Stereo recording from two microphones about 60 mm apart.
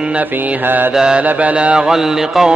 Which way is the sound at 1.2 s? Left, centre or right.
Right.